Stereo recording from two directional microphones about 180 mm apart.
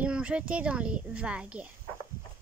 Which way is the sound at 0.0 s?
5° right (ahead or behind).